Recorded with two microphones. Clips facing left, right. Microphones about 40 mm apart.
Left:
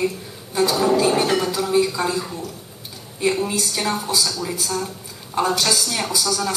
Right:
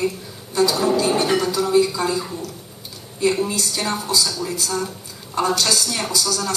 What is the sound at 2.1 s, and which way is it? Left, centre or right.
Speech, centre.